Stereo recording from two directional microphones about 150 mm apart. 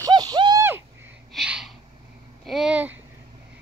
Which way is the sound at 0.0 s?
25° right (ahead or behind).